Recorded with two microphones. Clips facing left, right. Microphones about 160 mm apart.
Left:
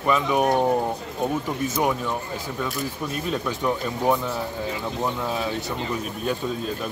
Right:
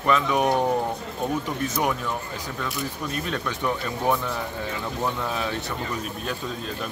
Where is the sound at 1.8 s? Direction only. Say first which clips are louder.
Left 2 dB; 20° left (ahead or behind).